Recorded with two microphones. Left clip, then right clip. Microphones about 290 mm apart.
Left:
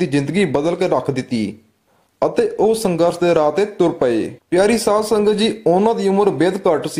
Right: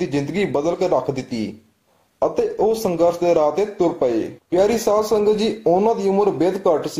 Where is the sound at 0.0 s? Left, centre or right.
Left.